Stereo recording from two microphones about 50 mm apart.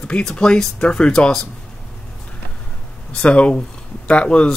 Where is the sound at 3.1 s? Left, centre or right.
Left.